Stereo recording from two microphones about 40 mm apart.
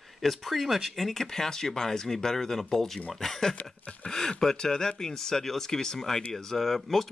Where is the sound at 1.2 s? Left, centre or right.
Centre.